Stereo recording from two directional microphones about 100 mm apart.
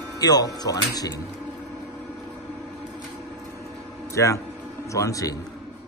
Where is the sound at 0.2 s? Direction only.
40° left (ahead or behind).